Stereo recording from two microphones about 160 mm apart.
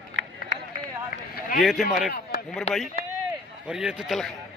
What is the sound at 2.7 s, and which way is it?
Speech, 40° left (ahead or behind).